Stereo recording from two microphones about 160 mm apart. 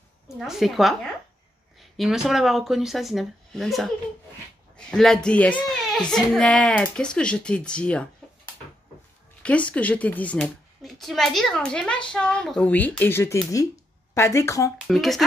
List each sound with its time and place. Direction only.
0.4 s speech: centre (ahead or behind)
9.4 s speech: 10° left (ahead or behind)
14.9 s speech: centre (ahead or behind)